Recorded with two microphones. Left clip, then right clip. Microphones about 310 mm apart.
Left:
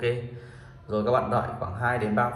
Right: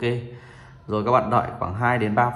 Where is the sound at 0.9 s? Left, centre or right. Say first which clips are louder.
Right 4 dB; centre.